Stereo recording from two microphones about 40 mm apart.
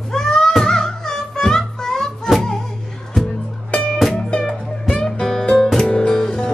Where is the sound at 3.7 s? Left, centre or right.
Centre.